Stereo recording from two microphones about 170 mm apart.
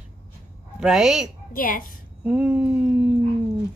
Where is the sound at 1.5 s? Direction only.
55° left (ahead or behind).